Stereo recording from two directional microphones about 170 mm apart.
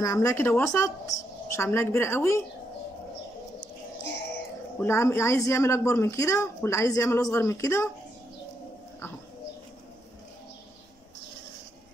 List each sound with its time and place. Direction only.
0.0 s speech: 15° left (ahead or behind)
4.7 s speech: 15° left (ahead or behind)